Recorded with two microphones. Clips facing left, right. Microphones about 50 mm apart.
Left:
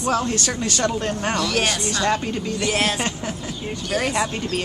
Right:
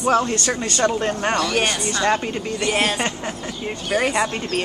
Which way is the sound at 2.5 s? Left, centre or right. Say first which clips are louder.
Right 2 dB; centre.